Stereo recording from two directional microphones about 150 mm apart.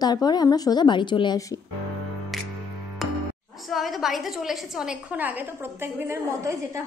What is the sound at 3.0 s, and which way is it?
Music, centre (ahead or behind).